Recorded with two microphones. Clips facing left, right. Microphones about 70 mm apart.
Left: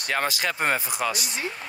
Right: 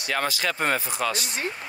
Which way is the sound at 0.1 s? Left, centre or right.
Left.